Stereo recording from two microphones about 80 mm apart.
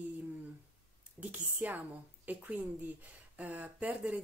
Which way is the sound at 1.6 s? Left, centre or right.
Right.